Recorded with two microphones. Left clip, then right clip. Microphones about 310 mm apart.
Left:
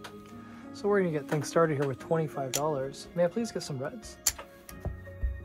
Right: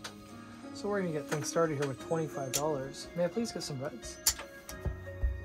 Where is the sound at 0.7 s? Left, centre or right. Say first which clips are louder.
Left 6 dB; left.